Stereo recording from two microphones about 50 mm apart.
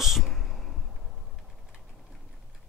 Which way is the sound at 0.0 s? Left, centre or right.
Centre.